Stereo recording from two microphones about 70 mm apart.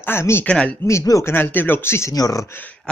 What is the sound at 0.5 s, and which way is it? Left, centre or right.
Speech, centre.